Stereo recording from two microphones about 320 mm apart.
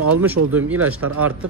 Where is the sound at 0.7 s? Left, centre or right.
Centre.